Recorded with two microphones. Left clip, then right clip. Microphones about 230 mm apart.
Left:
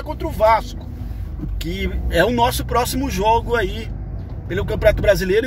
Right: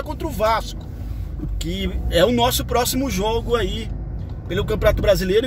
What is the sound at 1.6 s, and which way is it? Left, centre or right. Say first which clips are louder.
Speech: left 1 dB; centre.